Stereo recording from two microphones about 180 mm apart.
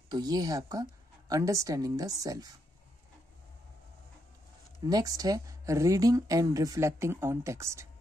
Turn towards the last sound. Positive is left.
turn(degrees=-15)  # may be behind; listen again after turning